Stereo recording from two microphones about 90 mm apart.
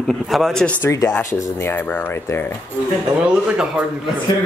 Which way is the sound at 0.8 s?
40° left (ahead or behind).